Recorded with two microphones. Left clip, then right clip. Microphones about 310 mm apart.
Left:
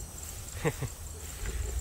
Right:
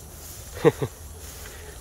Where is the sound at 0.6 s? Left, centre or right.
Centre.